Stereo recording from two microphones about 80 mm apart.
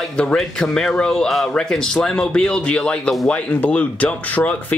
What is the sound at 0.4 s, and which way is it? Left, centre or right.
Speech, centre.